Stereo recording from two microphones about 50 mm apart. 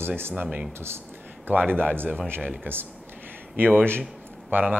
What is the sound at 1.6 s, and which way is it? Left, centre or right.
Speech, centre.